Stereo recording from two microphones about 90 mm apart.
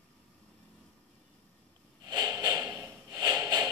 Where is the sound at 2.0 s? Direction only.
45° right (ahead or behind).